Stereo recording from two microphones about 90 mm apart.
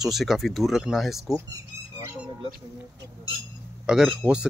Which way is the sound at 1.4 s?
35° right (ahead or behind).